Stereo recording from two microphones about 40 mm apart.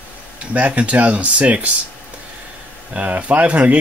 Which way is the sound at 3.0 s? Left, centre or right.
Right.